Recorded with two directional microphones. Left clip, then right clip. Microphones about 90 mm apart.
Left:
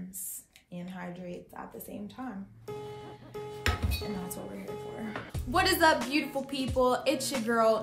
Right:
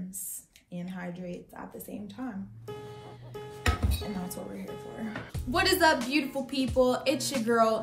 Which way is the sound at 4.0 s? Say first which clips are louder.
Even; centre (ahead or behind).